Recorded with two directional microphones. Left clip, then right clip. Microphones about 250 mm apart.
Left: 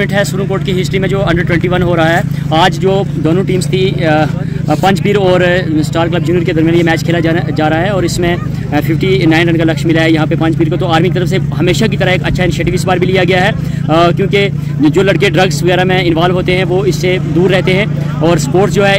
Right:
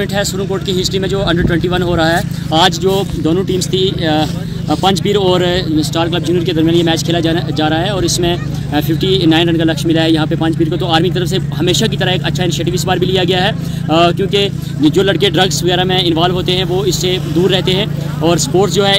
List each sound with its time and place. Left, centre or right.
1.1 s speech: centre
13.2 s speech: centre